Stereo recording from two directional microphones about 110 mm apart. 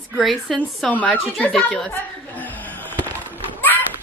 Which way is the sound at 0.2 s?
Centre (ahead or behind).